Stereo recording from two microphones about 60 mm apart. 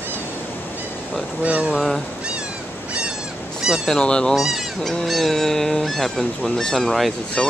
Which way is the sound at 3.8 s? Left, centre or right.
Centre.